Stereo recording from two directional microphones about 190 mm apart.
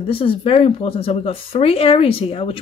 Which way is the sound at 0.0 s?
30° left (ahead or behind).